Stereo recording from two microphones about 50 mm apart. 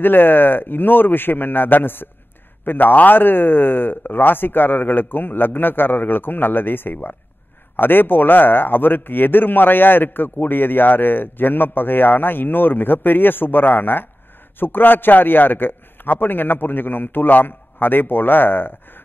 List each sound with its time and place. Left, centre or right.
0.0 s a man's voice: left